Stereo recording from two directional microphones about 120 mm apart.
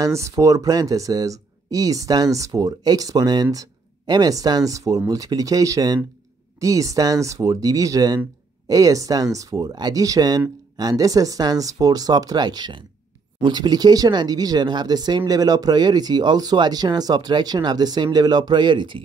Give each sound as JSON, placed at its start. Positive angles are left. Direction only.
{"t": 0.0, "sound": "speech", "side_deg": -25}